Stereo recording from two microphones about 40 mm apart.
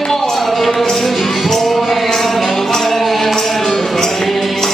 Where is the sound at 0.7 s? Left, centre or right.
Centre.